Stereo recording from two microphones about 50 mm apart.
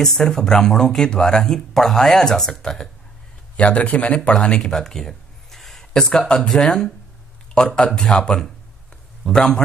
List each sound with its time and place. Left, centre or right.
0.0 s speech: centre
3.5 s speech: left
4.6 s speech: centre